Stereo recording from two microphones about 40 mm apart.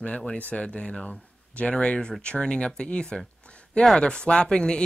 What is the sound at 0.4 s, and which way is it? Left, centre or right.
Speech, left.